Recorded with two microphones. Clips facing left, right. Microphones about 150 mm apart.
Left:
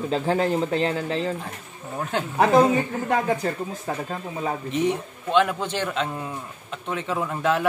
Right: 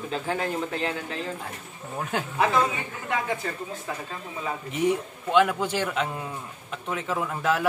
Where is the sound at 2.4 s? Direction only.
40° left (ahead or behind).